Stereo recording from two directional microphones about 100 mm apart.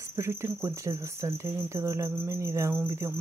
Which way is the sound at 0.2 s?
25° right (ahead or behind).